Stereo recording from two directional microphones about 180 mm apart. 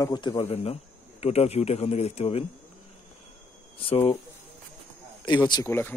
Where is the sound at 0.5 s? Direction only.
35° left (ahead or behind).